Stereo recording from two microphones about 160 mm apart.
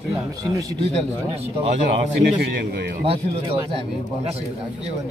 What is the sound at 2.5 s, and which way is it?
Speech, 90° right.